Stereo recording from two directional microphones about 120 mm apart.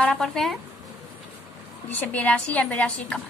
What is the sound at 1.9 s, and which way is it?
A woman's voice, 15° left (ahead or behind).